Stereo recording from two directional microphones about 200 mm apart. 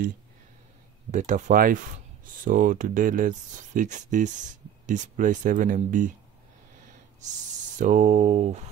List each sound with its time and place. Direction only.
1.1 s speech: 40° right (ahead or behind)
7.2 s speech: 40° right (ahead or behind)